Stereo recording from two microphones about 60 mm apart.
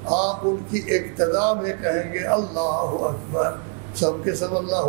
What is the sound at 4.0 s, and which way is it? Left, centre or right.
Speech, centre.